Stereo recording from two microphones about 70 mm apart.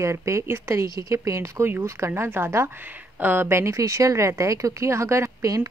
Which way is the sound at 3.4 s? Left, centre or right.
Right.